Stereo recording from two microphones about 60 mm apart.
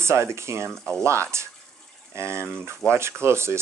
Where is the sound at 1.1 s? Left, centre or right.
Right.